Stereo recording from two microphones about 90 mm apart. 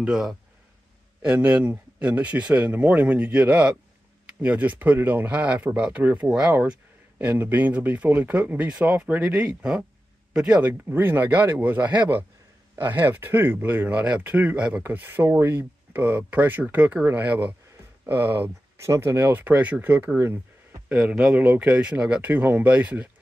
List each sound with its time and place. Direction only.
0.0 s speech: 5° right (ahead or behind)
10.6 s speech: 20° right (ahead or behind)
20.9 s speech: 5° right (ahead or behind)
21.4 s speech: 15° right (ahead or behind)